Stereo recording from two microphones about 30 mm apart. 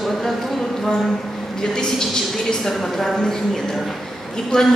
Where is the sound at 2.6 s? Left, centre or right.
Centre.